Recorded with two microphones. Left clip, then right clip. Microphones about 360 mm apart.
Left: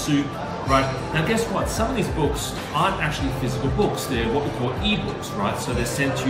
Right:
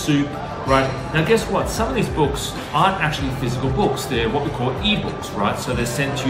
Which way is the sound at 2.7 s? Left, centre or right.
Centre.